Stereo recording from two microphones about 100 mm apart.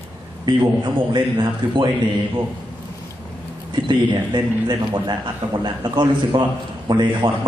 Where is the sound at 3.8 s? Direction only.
50° right (ahead or behind).